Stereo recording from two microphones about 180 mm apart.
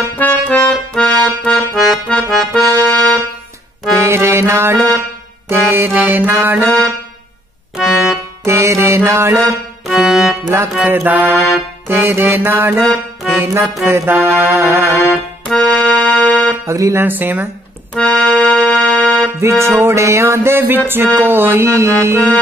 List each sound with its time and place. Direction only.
0.1 s accordion: 10° left (ahead or behind)
3.9 s music: 15° right (ahead or behind)
7.7 s music: centre (ahead or behind)
8.5 s music: 15° right (ahead or behind)
9.8 s music: centre (ahead or behind)
12.8 s music: centre (ahead or behind)
13.4 s music: 15° right (ahead or behind)
15.4 s music: 5° left (ahead or behind)
16.6 s music: 15° right (ahead or behind)
17.9 s music: 5° left (ahead or behind)
19.6 s music: 15° right (ahead or behind)